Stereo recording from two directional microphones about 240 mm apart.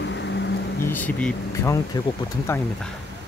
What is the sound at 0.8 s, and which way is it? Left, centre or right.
Speech, centre.